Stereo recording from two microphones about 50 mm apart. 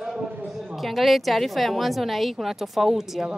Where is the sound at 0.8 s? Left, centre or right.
Centre.